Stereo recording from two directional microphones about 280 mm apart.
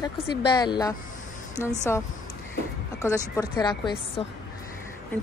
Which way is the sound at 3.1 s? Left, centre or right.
Centre.